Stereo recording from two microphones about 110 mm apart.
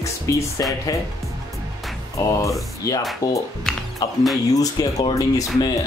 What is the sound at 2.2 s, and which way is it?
Speech, 30° left (ahead or behind).